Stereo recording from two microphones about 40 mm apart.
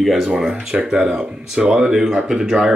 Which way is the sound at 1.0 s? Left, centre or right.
Right.